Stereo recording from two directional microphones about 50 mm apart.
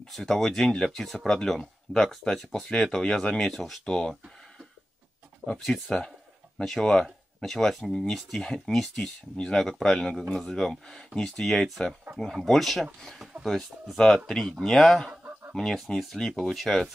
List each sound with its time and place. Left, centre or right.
0.1 s speech: centre
3.8 s speech: centre
5.9 s speech: centre
13.9 s speech: centre